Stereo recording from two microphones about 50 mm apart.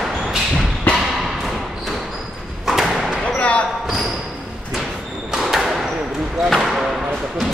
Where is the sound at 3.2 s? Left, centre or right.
Left.